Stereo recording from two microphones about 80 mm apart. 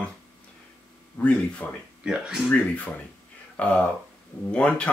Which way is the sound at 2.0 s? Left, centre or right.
Centre.